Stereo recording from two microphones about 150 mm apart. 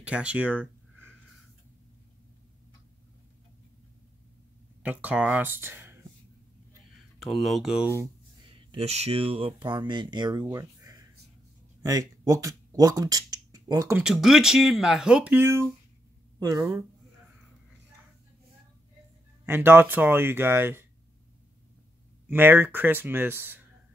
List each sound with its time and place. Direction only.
0.0 s a sound: 10° right (ahead or behind)
4.8 s speech: 10° right (ahead or behind)
7.2 s speech: centre (ahead or behind)
8.5 s speech: 40° right (ahead or behind)
10.4 s a sound: 20° right (ahead or behind)
11.8 s speech: 20° right (ahead or behind)
13.9 s speech: 5° right (ahead or behind); by 16.6 s 25° right (ahead or behind)
19.4 s speech: 15° right (ahead or behind)
22.3 s speech: 15° right (ahead or behind)